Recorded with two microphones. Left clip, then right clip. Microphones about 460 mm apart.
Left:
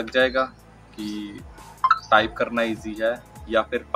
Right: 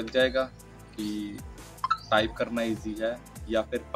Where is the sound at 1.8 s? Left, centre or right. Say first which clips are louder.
Left 8 dB; right.